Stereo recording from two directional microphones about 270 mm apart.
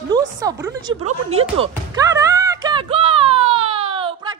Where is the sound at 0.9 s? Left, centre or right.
Right.